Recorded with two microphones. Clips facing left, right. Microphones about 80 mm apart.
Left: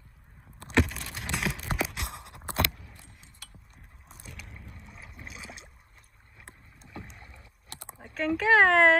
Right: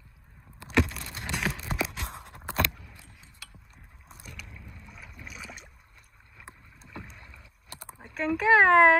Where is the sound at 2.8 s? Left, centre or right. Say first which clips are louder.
Right 1 dB; left.